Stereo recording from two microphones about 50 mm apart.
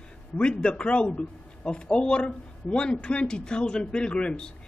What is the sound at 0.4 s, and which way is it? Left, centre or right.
A man's voice, centre.